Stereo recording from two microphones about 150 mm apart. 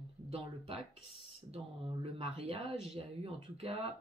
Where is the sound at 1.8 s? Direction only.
40° right (ahead or behind).